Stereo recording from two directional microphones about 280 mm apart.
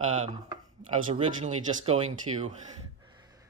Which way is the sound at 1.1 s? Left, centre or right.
Right.